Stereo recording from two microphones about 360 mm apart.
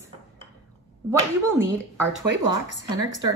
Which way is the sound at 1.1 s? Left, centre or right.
Centre.